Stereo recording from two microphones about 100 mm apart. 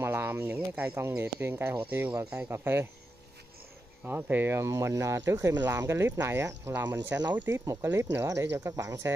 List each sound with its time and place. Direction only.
0.0 s speech: 20° right (ahead or behind)
4.0 s speech: 20° right (ahead or behind)